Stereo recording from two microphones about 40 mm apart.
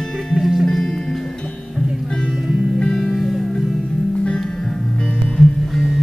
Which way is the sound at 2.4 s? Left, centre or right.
Centre.